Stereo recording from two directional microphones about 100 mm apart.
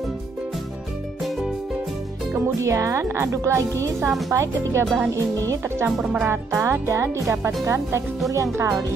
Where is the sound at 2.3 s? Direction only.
30° right (ahead or behind).